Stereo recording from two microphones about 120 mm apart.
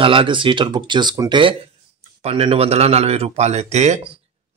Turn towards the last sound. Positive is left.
turn(degrees=-70)  # may be behind; listen again after turning